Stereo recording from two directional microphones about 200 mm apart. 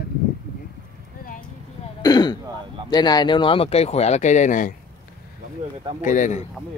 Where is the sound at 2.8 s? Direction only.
20° left (ahead or behind); by 4.7 s 40° left (ahead or behind).